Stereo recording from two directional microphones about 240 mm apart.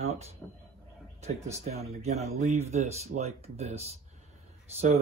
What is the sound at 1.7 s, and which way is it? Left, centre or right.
Speech, right.